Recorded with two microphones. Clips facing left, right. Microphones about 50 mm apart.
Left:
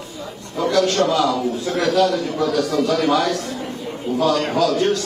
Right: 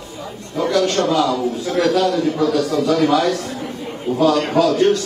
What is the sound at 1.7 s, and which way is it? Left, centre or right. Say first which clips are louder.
Speech: right 1 dB; left.